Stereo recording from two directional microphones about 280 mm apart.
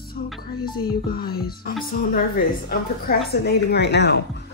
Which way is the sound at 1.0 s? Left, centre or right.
Left.